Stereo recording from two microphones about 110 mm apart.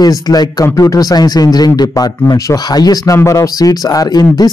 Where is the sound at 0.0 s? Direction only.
35° left (ahead or behind).